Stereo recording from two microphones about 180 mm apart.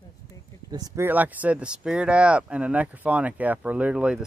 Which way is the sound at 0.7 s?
20° right (ahead or behind).